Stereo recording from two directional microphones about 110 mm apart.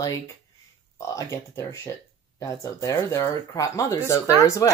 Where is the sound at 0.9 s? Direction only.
25° left (ahead or behind).